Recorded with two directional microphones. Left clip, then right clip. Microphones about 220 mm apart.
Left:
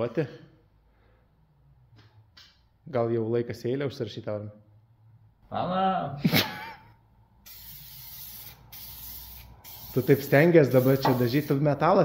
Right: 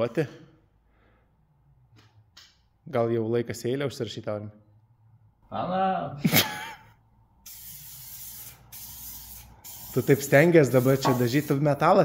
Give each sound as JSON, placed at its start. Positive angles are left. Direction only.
{"t": 0.0, "sound": "speech", "side_deg": -25}
{"t": 2.9, "sound": "speech", "side_deg": -20}
{"t": 5.5, "sound": "speech", "side_deg": 0}
{"t": 6.2, "sound": "gasp", "side_deg": -20}
{"t": 9.9, "sound": "speech", "side_deg": -15}